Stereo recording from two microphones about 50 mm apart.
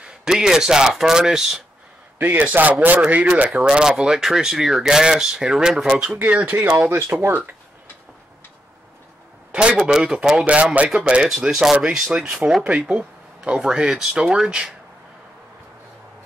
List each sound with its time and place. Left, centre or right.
0.0 s speech: centre
2.1 s speech: right
3.6 s speech: centre
6.4 s speech: right
6.9 s speech: right
9.5 s a man's voice: right
9.8 s speech: centre
13.7 s speech: centre